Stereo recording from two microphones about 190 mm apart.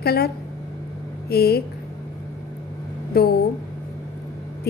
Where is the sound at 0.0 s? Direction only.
55° left (ahead or behind).